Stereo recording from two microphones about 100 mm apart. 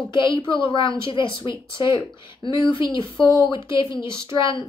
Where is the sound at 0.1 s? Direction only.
55° left (ahead or behind).